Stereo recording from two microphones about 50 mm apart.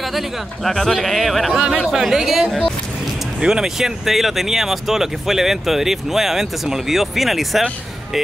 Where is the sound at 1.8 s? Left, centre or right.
Centre.